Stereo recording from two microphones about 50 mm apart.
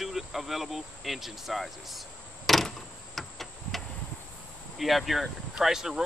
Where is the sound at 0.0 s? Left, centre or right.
Centre.